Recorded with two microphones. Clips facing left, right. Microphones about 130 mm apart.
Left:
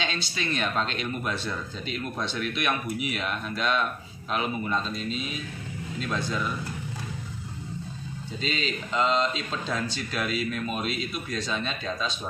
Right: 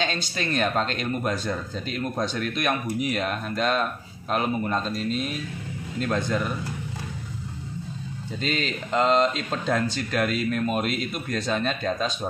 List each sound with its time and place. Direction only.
0.0 s speech: 45° right (ahead or behind)
8.4 s speech: 50° right (ahead or behind)